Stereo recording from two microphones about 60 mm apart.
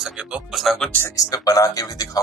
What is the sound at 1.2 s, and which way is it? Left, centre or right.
Speech, left.